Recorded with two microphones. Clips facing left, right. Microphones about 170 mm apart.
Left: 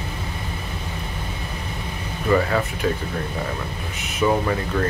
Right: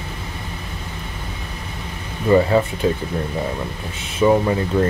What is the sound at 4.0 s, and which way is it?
Speech, 25° right (ahead or behind).